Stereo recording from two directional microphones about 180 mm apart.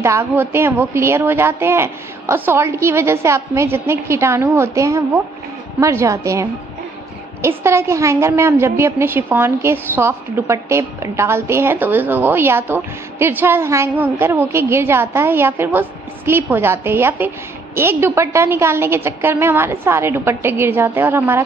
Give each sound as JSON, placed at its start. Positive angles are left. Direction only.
{"t": 0.0, "sound": "a woman's voice", "side_deg": -15}
{"t": 7.4, "sound": "a woman's voice", "side_deg": -15}